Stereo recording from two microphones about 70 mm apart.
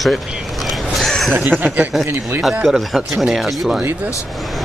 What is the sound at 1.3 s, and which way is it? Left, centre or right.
Speech, right.